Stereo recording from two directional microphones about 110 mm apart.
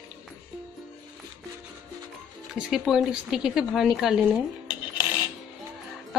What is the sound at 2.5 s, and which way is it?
A woman's voice, 5° right (ahead or behind).